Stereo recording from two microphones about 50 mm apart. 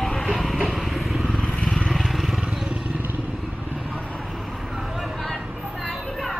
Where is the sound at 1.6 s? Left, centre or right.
Centre.